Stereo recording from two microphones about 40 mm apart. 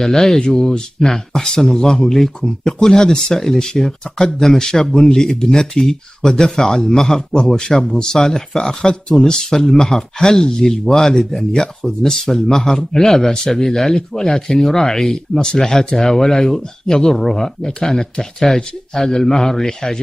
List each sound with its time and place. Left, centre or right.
0.0 s speech: centre
7.2 s speech: centre